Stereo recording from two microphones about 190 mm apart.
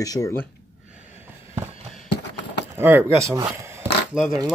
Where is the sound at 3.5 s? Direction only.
10° right (ahead or behind).